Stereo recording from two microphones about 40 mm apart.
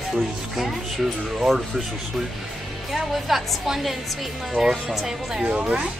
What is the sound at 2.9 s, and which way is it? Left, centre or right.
A woman's voice, centre.